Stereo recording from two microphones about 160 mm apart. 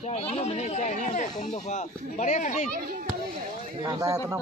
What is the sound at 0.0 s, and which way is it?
Speech, 40° left (ahead or behind).